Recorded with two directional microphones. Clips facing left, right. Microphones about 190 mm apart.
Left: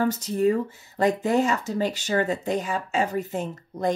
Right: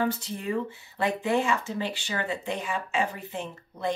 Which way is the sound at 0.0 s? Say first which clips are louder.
Left 7 dB; 45° left (ahead or behind).